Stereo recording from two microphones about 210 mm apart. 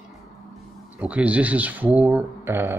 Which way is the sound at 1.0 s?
5° right (ahead or behind).